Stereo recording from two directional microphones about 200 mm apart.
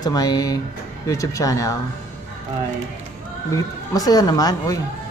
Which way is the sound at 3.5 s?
20° left (ahead or behind).